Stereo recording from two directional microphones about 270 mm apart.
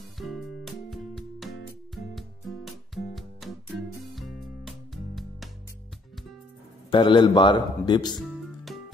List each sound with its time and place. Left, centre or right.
0.2 s music: centre
6.9 s speech: centre
8.2 s music: centre